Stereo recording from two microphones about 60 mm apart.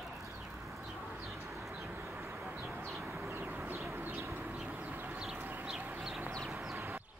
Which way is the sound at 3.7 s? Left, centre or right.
Right.